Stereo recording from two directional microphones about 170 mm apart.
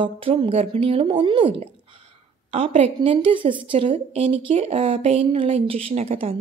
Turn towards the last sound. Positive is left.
turn(degrees=-40)  # may be behind; listen again after turning